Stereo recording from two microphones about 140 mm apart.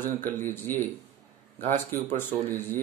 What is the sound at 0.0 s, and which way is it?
Speech, 15° left (ahead or behind).